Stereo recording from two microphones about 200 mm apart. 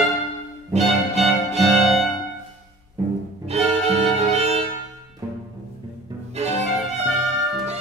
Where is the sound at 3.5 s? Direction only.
30° right (ahead or behind).